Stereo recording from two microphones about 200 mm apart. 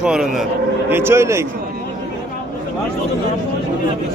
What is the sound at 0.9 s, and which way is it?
Speech, 10° right (ahead or behind).